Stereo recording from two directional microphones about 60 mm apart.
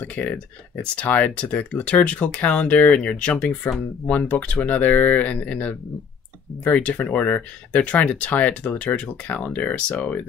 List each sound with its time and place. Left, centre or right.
0.0 s speech: left